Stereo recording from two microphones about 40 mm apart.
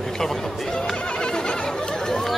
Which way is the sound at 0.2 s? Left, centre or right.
Centre.